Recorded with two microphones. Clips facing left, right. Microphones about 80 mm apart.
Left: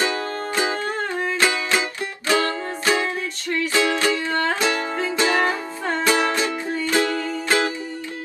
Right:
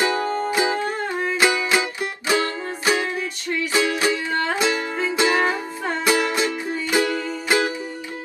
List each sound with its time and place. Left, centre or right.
0.0 s music: right